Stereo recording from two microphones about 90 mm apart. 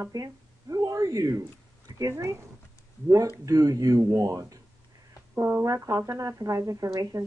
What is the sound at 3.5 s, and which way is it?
Speech, 45° right (ahead or behind).